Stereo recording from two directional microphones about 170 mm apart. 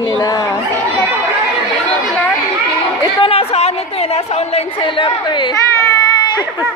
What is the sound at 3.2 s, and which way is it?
A woman's voice, 35° left (ahead or behind).